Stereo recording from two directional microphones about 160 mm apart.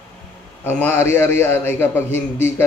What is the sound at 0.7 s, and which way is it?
A man's voice, 15° left (ahead or behind).